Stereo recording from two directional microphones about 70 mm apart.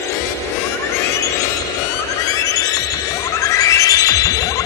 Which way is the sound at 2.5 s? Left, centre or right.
Left.